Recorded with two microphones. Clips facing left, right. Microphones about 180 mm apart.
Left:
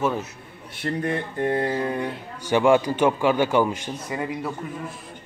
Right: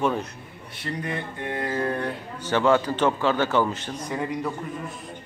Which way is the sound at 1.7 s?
15° left (ahead or behind).